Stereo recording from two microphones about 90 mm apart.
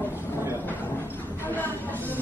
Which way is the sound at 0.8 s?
20° left (ahead or behind).